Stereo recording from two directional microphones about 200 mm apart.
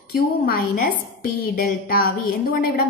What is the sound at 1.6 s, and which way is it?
Speech, 45° left (ahead or behind).